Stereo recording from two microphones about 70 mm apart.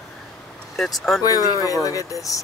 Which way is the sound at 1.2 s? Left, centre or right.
Left.